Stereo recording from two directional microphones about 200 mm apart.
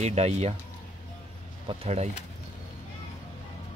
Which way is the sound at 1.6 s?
30° right (ahead or behind).